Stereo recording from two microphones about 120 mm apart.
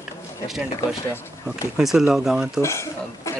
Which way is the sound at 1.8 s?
5° right (ahead or behind).